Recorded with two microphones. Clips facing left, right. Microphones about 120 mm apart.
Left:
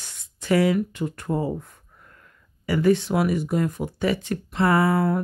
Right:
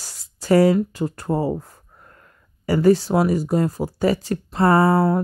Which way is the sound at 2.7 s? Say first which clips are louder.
Right 4 dB; 35° right (ahead or behind).